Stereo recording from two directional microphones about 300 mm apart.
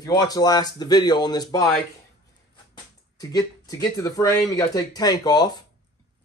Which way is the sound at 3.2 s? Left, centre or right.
Centre.